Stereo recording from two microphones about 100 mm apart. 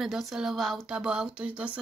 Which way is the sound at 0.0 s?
5° right (ahead or behind).